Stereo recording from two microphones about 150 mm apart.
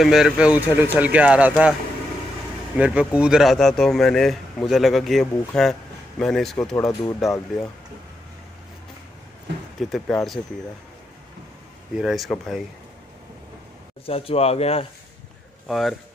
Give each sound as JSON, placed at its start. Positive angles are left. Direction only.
{"t": 0.0, "sound": "speech", "side_deg": -5}
{"t": 2.8, "sound": "speech", "side_deg": -10}
{"t": 6.9, "sound": "speech", "side_deg": 20}
{"t": 9.8, "sound": "speech", "side_deg": 0}
{"t": 12.0, "sound": "speech", "side_deg": 0}
{"t": 14.0, "sound": "speech", "side_deg": 40}
{"t": 15.7, "sound": "speech", "side_deg": 0}